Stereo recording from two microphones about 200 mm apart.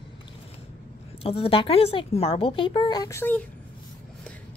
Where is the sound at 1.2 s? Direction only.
30° left (ahead or behind); by 3.5 s 10° left (ahead or behind).